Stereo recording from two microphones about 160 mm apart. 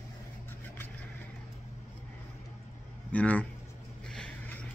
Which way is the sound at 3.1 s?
10° left (ahead or behind).